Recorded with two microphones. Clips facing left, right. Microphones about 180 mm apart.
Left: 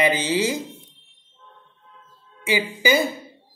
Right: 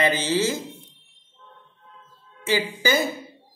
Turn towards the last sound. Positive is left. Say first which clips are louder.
# left 2 dB
turn(degrees=15)  # may be behind; listen again after turning